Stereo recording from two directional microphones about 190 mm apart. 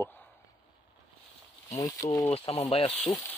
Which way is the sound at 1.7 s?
20° left (ahead or behind).